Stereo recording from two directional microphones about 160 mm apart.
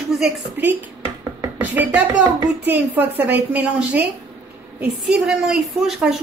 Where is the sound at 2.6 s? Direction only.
10° right (ahead or behind).